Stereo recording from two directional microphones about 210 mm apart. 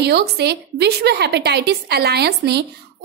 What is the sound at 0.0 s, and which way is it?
Speech, 50° right (ahead or behind).